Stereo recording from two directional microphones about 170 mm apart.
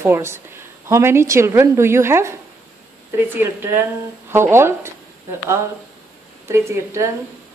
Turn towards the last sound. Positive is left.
turn(degrees=-15)  # may be behind; listen again after turning